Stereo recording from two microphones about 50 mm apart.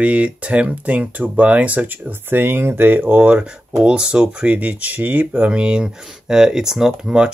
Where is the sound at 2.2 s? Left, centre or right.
Right.